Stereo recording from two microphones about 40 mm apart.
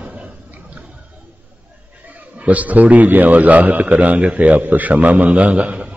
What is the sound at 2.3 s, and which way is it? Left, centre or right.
A man's voice, right.